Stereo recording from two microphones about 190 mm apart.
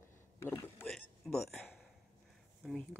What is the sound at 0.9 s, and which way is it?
Speech, centre (ahead or behind).